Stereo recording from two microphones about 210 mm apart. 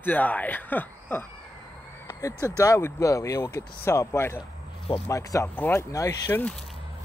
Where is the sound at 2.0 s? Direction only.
15° left (ahead or behind).